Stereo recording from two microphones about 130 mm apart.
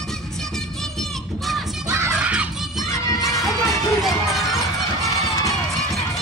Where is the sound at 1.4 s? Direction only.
Centre (ahead or behind).